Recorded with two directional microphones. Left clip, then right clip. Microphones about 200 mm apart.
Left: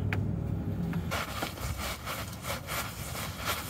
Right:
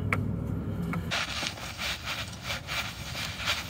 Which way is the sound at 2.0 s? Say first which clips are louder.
Right 3 dB; 55° left (ahead or behind).